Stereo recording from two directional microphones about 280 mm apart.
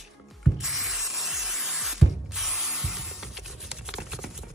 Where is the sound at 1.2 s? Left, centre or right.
Centre.